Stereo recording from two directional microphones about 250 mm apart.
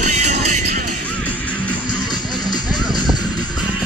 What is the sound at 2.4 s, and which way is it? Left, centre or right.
Music, centre.